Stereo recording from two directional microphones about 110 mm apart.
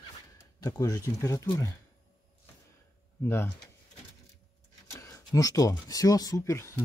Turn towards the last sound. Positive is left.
turn(degrees=25)  # may be behind; listen again after turning